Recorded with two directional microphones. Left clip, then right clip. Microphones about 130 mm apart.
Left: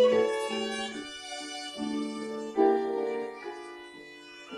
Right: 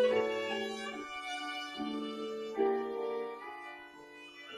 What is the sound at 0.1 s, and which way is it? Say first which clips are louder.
Music: left 6 dB; 5° left (ahead or behind).